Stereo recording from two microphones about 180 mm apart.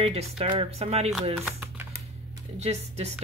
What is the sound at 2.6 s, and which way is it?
Speech, 35° right (ahead or behind).